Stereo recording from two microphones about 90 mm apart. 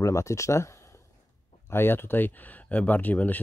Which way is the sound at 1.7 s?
25° left (ahead or behind).